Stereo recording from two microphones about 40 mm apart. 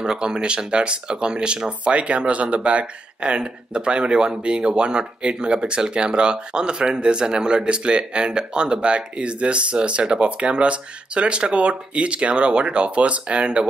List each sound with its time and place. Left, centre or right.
0.0 s speech: centre